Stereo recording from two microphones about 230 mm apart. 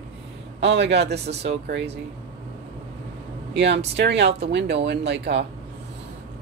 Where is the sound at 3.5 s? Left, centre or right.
Right.